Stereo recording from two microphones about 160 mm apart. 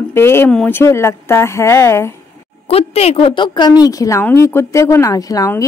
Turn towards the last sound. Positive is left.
turn(degrees=20)  # may be behind; listen again after turning